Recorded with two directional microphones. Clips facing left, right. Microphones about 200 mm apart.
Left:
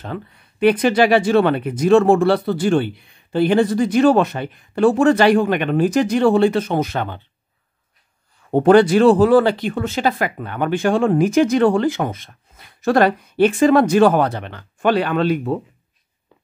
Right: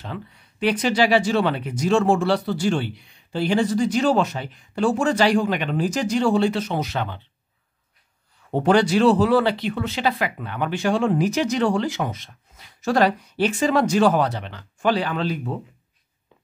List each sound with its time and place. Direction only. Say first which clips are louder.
0.0 s speech: left 5 dB; 55° left (ahead or behind)
8.5 s speech: left 7 dB; 50° left (ahead or behind)